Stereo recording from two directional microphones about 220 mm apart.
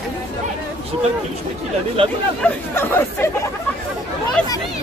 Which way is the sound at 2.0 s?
25° right (ahead or behind).